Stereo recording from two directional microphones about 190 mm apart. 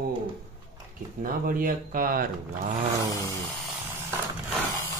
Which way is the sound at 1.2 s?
45° right (ahead or behind).